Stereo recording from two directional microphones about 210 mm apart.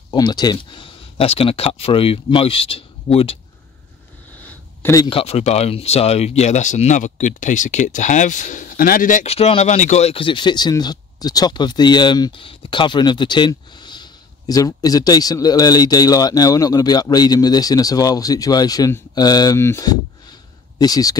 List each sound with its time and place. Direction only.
0.1 s speech: 20° left (ahead or behind)
4.8 s speech: 20° left (ahead or behind)